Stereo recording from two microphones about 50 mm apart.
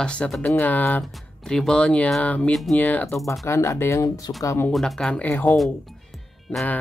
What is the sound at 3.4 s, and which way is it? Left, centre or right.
Speech, left.